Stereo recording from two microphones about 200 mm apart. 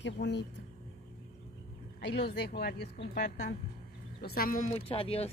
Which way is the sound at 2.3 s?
50° left (ahead or behind).